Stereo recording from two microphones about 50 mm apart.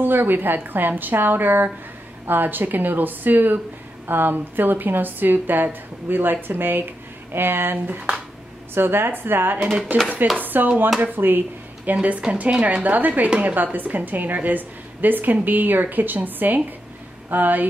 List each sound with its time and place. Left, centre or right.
0.0 s a woman's voice: right
9.9 s a woman's voice: right